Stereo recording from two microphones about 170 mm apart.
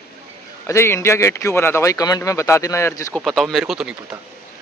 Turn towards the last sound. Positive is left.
turn(degrees=0)  # may be behind; listen again after turning